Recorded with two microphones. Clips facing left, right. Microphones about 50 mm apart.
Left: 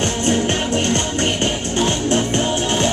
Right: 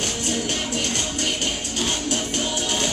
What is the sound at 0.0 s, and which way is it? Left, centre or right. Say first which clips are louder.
Music: left 8 dB; left.